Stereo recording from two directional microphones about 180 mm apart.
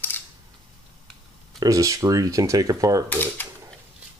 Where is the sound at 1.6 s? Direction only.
15° right (ahead or behind).